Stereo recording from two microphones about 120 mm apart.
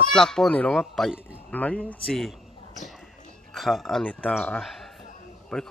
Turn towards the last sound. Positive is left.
turn(degrees=5)  # may be behind; listen again after turning